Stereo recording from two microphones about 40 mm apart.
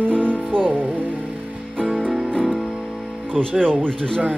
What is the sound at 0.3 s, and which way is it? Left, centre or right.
Music, left.